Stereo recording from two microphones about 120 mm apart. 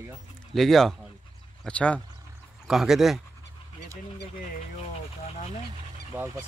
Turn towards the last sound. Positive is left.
turn(degrees=-15)  # may be behind; listen again after turning